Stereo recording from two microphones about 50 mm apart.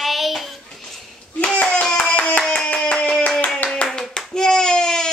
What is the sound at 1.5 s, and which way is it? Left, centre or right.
Speech, left.